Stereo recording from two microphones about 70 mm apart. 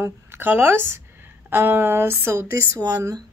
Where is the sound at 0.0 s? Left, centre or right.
Right.